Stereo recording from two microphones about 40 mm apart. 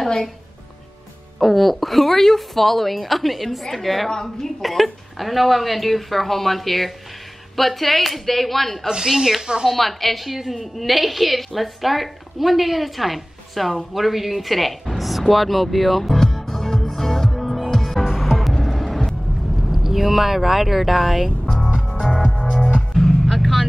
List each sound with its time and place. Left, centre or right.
1.4 s a woman's voice: centre
4.1 s speech: centre
4.6 s a woman's voice: centre
8.8 s speech: centre
9.8 s a woman's voice: centre
13.9 s a sound: centre
18.4 s music: centre
19.6 s speech: centre
22.0 s music: centre
22.9 s music: centre